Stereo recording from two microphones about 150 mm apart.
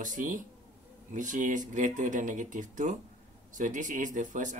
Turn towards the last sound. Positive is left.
turn(degrees=-60)  # may be behind; listen again after turning